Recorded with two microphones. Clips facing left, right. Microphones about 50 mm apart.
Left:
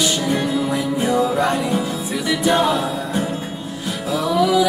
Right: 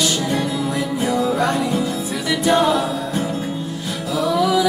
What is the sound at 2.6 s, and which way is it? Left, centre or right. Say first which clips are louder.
Music: right 1 dB; left.